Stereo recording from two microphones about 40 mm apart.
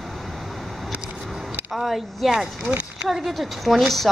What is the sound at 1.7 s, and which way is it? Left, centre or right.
Speech, centre.